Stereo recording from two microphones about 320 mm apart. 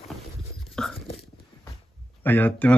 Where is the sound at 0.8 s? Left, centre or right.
Centre.